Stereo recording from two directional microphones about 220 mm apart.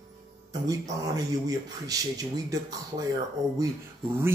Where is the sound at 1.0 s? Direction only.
15° right (ahead or behind).